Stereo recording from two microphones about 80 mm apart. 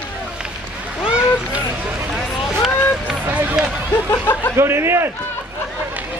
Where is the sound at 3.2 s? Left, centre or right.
Right.